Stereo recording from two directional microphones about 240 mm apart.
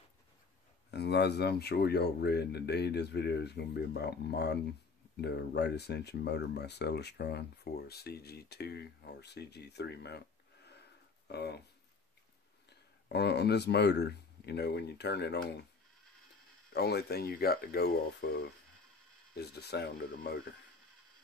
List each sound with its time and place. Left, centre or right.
0.9 s speech: left
12.6 s speech: left
16.7 s speech: left